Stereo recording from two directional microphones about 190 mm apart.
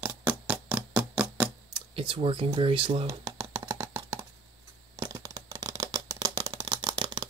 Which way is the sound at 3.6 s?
15° right (ahead or behind).